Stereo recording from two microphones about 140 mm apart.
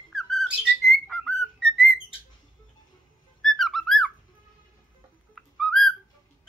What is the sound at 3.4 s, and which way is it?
Music, centre (ahead or behind).